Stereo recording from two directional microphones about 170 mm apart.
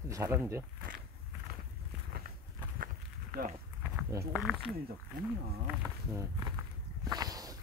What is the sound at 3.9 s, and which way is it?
Speech, 5° right (ahead or behind).